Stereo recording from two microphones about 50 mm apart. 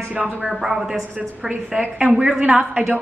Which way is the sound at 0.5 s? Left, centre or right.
Centre.